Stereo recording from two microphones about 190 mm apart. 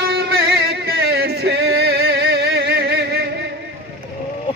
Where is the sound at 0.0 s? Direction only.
55° right (ahead or behind).